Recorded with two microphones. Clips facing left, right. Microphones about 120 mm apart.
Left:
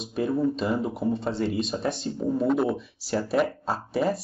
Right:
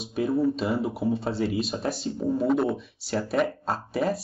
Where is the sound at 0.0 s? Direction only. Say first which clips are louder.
Right 1 dB; centre (ahead or behind).